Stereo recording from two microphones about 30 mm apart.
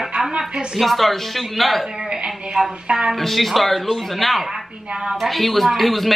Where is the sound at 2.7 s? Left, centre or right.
Right.